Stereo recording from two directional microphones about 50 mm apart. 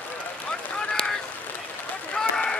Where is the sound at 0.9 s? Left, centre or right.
Centre.